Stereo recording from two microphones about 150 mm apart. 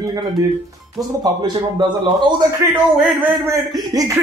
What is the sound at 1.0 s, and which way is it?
Speech, 25° right (ahead or behind).